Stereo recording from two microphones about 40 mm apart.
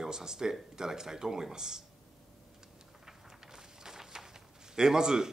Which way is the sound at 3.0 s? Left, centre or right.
Centre.